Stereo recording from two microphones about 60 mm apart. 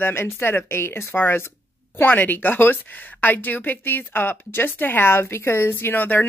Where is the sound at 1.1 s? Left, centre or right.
Left.